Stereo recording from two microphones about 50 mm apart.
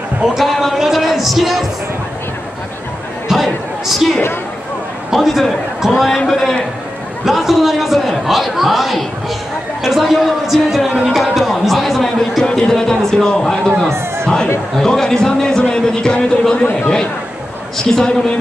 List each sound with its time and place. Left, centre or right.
0.4 s music: centre
3.3 s a sound: centre
5.1 s speech: centre
17.8 s speech: centre